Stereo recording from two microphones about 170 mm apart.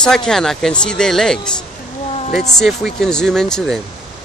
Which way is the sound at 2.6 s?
Centre (ahead or behind).